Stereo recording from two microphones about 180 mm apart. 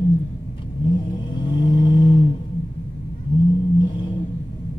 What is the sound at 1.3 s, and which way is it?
Vehicle, 25° left (ahead or behind).